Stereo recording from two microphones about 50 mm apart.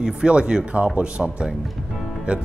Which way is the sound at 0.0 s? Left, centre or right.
Centre.